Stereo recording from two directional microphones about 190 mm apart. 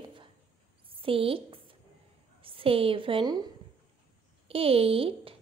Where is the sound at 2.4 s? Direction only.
30° right (ahead or behind).